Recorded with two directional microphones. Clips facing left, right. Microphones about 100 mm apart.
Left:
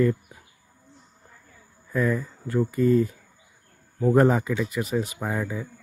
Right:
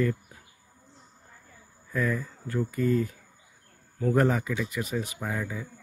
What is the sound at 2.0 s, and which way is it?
Speech, 25° left (ahead or behind).